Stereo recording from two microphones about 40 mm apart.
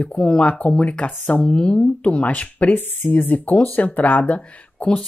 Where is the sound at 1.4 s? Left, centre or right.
Left.